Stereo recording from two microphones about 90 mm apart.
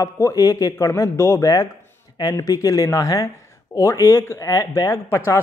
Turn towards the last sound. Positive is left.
turn(degrees=35)  # may be behind; listen again after turning